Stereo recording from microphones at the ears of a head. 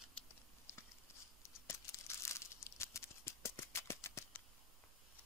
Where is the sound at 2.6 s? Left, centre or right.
Left.